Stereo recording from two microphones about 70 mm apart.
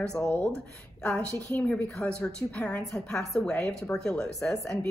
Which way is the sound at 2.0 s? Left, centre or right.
Centre.